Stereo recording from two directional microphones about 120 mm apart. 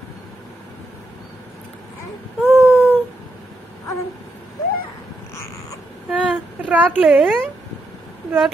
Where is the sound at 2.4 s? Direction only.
15° left (ahead or behind).